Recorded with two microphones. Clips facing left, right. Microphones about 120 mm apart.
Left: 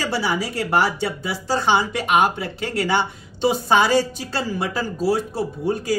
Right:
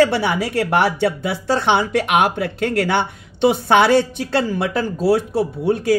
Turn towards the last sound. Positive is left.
turn(degrees=-65)  # may be behind; listen again after turning